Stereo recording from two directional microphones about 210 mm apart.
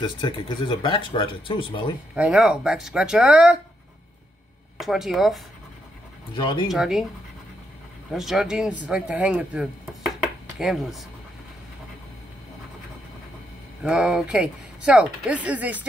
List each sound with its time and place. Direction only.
0.0 s speech: 20° left (ahead or behind)
2.1 s speech: 5° right (ahead or behind)
4.7 s speech: centre (ahead or behind)
6.3 s speech: 25° left (ahead or behind)
6.7 s speech: centre (ahead or behind)
8.1 s speech: centre (ahead or behind)
13.8 s speech: 5° right (ahead or behind)